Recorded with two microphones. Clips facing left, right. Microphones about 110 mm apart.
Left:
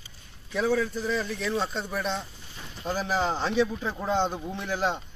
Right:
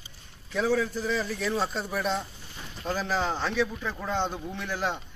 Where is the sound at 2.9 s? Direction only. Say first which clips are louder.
Left 1 dB; 10° left (ahead or behind).